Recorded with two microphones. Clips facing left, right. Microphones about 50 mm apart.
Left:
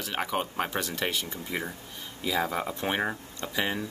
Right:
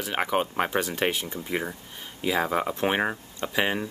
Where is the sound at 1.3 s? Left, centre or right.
Centre.